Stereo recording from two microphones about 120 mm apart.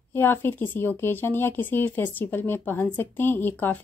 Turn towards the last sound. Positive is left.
turn(degrees=15)  # may be behind; listen again after turning